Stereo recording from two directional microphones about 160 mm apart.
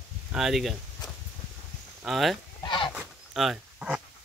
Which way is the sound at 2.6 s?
30° left (ahead or behind).